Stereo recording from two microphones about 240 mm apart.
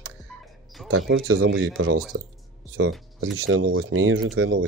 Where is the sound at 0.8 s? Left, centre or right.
Right.